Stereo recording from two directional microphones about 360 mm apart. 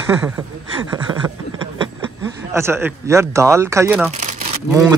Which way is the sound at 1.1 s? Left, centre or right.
Centre.